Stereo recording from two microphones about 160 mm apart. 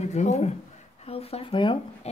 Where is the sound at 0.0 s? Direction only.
45° left (ahead or behind).